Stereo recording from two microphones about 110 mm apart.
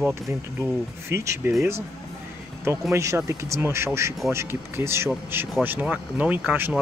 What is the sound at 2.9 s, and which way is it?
Speech, 25° right (ahead or behind).